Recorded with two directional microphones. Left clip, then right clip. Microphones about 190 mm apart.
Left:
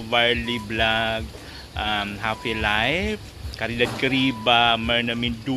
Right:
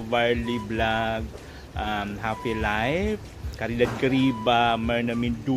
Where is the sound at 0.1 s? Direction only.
Centre (ahead or behind).